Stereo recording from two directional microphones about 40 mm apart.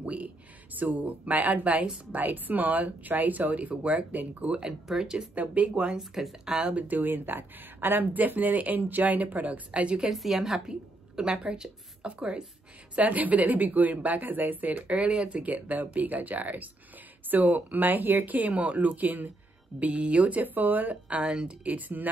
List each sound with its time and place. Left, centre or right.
0.0 s a sound: right
0.7 s speech: right
4.5 s speech: right
5.3 s speech: right
5.9 s speech: centre
6.6 s speech: right
9.7 s speech: right
10.0 s a woman's voice: centre; by 12.4 s right
12.9 s speech: right
15.5 s speech: right
19.8 s speech: right
20.9 s speech: right
21.6 s speech: right